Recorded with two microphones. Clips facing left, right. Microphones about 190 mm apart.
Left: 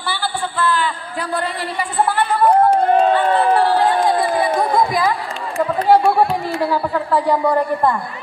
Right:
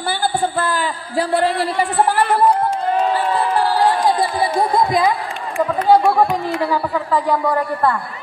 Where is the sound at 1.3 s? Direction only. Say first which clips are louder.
Right 5 dB; 70° right (ahead or behind).